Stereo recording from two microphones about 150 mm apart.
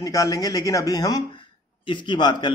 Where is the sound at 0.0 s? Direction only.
20° left (ahead or behind).